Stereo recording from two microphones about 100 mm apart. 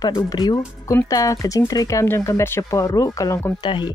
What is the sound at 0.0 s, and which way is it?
Speech, 40° left (ahead or behind).